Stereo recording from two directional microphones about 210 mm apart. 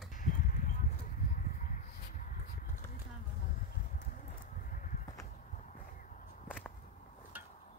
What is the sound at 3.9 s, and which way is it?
Clip-clop, 40° left (ahead or behind).